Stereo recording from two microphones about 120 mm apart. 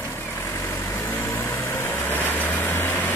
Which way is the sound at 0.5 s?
20° left (ahead or behind).